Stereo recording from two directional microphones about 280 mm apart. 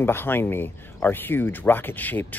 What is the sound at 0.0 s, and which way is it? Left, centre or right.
Speech, centre.